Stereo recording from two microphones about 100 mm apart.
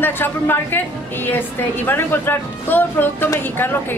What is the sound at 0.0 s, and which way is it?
A woman's voice, 20° left (ahead or behind).